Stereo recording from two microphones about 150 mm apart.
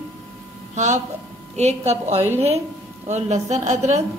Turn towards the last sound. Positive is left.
turn(degrees=-50)  # may be behind; listen again after turning